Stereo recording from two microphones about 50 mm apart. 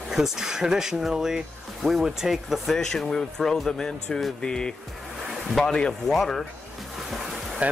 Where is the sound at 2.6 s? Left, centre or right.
Centre.